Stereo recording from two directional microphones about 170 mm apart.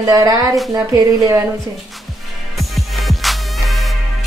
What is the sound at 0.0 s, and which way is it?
A woman's voice, 20° right (ahead or behind).